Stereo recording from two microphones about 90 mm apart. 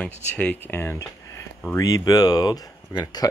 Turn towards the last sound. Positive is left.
turn(degrees=45)  # may be behind; listen again after turning